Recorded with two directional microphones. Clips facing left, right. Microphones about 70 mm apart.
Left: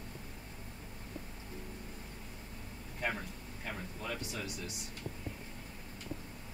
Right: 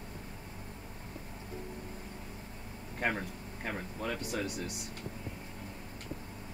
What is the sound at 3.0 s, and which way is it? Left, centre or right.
Speech, right.